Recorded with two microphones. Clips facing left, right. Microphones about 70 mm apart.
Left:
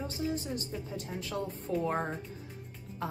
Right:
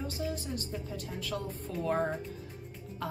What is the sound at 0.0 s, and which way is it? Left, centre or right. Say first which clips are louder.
A woman's voice: left 2 dB; left.